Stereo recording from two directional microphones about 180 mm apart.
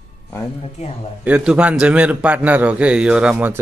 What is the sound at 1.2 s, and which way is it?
A man's voice, 5° right (ahead or behind).